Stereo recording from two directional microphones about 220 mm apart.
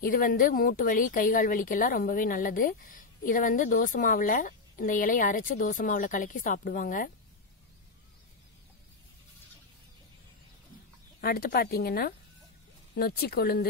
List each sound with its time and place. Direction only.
0.0 s speech: 40° left (ahead or behind)
11.1 s speech: 45° left (ahead or behind)